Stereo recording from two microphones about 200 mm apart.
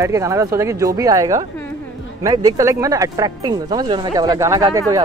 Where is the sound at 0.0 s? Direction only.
15° right (ahead or behind).